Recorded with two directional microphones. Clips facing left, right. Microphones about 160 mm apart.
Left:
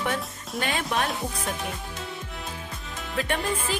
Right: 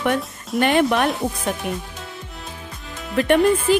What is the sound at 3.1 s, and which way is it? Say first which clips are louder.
Speech: right 12 dB; 60° right (ahead or behind).